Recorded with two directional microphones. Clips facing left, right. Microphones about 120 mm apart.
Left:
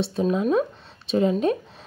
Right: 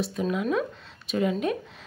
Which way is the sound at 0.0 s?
30° left (ahead or behind).